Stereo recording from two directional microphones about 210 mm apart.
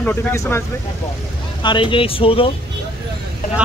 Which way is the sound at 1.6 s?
20° left (ahead or behind).